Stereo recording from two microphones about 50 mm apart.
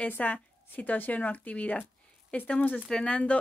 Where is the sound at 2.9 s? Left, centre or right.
Centre.